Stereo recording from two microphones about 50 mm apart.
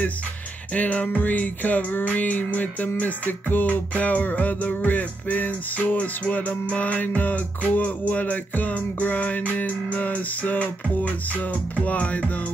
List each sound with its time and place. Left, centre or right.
0.7 s music: left